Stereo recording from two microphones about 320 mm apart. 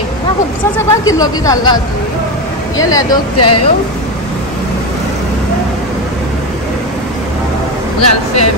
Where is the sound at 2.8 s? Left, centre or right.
Centre.